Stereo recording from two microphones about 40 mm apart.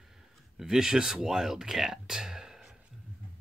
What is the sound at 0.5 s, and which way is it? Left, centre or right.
Speech, centre.